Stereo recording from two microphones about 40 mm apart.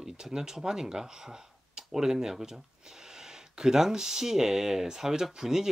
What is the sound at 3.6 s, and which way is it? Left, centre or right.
Speech, centre.